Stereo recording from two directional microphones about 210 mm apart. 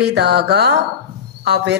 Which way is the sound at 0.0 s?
50° right (ahead or behind).